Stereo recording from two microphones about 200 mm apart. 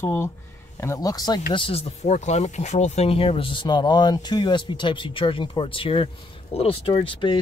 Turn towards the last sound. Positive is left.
turn(degrees=25)  # may be behind; listen again after turning